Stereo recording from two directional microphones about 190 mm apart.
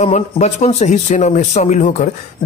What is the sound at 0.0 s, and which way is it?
A man's voice, 40° left (ahead or behind).